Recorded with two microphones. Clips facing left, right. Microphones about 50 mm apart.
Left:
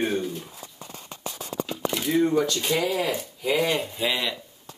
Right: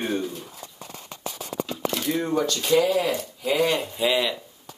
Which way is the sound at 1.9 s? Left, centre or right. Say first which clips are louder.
Left 5 dB; centre.